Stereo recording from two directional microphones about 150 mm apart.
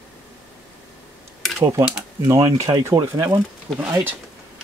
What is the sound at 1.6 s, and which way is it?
Speech, 20° right (ahead or behind).